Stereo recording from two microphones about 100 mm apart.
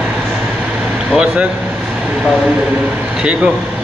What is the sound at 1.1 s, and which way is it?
Air conditioning, 10° right (ahead or behind).